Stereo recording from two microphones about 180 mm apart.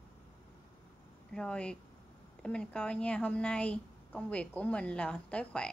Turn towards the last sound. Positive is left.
turn(degrees=5)  # may be behind; listen again after turning